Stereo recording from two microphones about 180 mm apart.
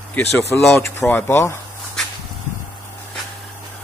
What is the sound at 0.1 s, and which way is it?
Speech, 15° left (ahead or behind).